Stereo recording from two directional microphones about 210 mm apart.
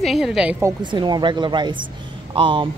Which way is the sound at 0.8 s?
20° right (ahead or behind).